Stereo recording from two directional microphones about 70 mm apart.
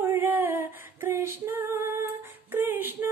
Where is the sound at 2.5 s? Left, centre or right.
Right.